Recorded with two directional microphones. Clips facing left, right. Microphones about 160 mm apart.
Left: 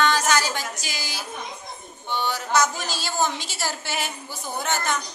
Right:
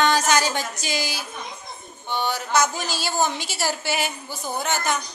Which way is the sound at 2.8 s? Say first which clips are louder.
Right 2 dB; 5° right (ahead or behind).